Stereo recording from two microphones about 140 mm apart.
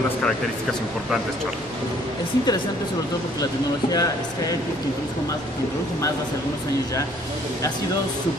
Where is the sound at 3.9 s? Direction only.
25° left (ahead or behind).